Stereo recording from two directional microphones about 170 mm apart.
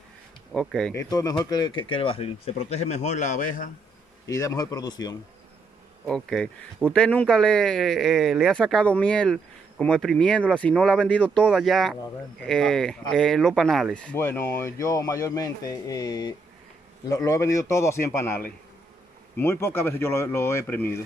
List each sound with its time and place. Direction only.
0.5 s speech: centre (ahead or behind)
0.9 s speech: 20° left (ahead or behind); by 3.7 s 50° left (ahead or behind)
4.3 s speech: 20° left (ahead or behind)
6.0 s speech: 5° left (ahead or behind)